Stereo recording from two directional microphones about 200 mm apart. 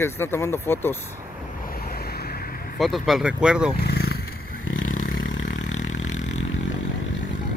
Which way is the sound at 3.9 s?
50° left (ahead or behind).